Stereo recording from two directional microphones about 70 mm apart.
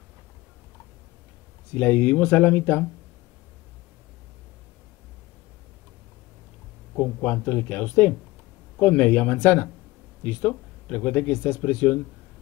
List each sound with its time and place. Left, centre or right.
1.8 s speech: left
7.0 s speech: left